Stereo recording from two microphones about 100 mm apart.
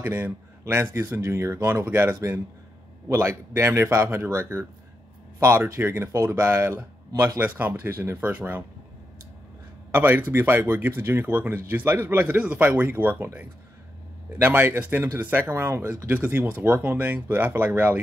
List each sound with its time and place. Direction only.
0.0 s speech: 20° right (ahead or behind)
7.3 s speech: 15° right (ahead or behind)
9.8 s speech: 20° right (ahead or behind)
14.4 s speech: 20° right (ahead or behind)